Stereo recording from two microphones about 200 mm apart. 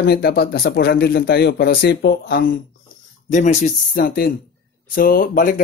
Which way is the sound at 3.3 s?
35° left (ahead or behind).